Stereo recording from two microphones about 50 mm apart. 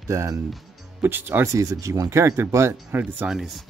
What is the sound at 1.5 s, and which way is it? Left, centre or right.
Speech, right.